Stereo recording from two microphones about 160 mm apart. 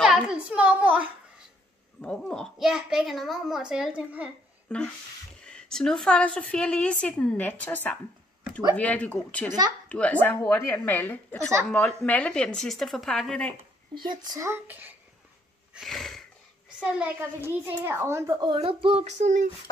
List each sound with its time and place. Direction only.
0.0 s a sound: 5° right (ahead or behind)
2.0 s a child's voice: 5° left (ahead or behind)
4.6 s a woman's voice: 5° left (ahead or behind)
14.0 s a child's voice: 20° right (ahead or behind)
15.7 s a sound: centre (ahead or behind)
17.0 s a child's voice: 15° right (ahead or behind)
18.5 s child singing: 35° right (ahead or behind)